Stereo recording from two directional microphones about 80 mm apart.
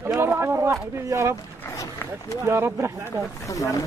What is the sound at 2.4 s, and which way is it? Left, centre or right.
Speech, right.